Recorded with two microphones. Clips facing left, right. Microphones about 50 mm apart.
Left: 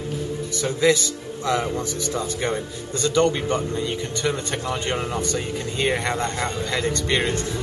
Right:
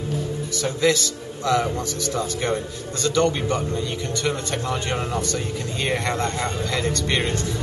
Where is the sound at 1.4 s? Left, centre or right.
Left.